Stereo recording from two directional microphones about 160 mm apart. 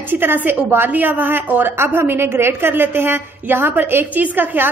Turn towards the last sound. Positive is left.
turn(degrees=-10)  # may be behind; listen again after turning